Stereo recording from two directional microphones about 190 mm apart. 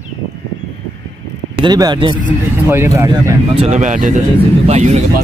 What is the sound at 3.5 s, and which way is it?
Speech, 35° right (ahead or behind).